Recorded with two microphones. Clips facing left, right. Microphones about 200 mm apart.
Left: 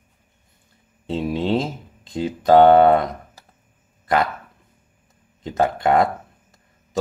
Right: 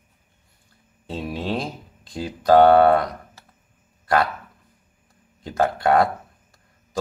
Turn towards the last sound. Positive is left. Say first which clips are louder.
# left 1 dB
turn(degrees=20)  # may be behind; listen again after turning